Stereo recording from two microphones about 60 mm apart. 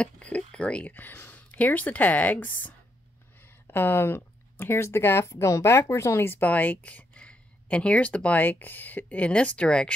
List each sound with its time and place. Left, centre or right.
0.0 s speech: left
0.9 s speech: left
3.6 s speech: left
6.2 s speech: left; by 9.9 s centre